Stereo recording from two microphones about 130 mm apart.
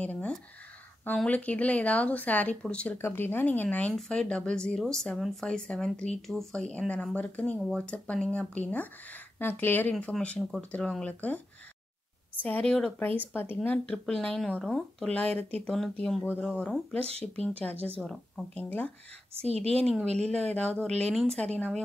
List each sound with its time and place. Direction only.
0.0 s a sound: 10° left (ahead or behind)
1.0 s speech: 10° left (ahead or behind)
19.4 s a woman's voice: 55° right (ahead or behind)
19.7 s speech: 5° left (ahead or behind)